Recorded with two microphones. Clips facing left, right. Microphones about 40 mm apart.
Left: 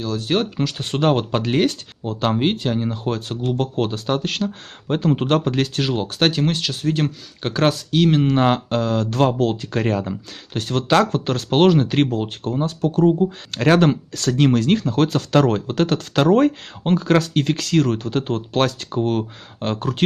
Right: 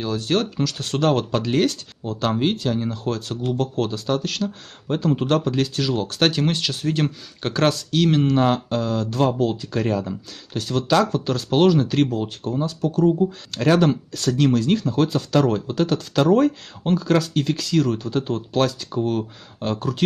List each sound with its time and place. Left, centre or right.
0.6 s speech: left
6.1 s speech: centre
8.4 s speech: left